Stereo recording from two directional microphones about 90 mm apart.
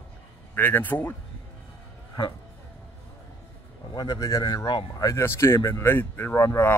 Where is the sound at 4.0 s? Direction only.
40° left (ahead or behind).